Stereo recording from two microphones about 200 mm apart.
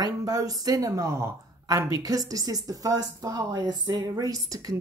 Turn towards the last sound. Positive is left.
turn(degrees=-20)  # may be behind; listen again after turning